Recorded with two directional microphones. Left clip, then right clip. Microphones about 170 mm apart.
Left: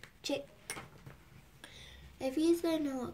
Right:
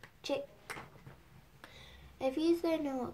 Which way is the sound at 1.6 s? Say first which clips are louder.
Left 1 dB; 20° left (ahead or behind).